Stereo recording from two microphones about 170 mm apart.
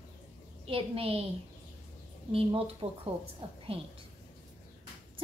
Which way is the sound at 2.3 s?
35° right (ahead or behind).